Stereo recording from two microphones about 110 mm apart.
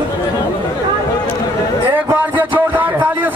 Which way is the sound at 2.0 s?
20° right (ahead or behind).